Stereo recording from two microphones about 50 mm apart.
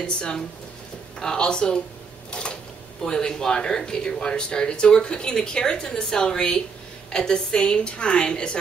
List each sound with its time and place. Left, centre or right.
0.0 s speech: centre
2.3 s a sound: left
3.0 s speech: centre